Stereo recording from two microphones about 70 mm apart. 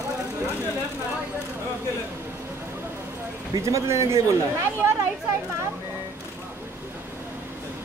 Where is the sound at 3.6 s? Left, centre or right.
Right.